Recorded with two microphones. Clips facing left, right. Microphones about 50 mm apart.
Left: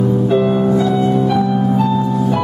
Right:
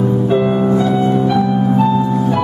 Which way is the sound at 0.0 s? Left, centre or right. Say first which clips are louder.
Even; centre.